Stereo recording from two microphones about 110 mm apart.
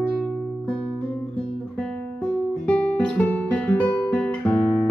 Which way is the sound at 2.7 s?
10° left (ahead or behind).